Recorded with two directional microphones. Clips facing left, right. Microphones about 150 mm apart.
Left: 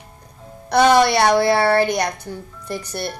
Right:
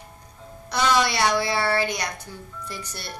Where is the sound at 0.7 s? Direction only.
55° left (ahead or behind).